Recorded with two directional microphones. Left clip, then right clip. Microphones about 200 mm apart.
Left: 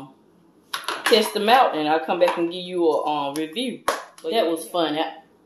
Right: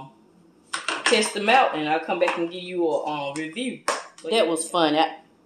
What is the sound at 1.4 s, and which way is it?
Speech, 40° left (ahead or behind).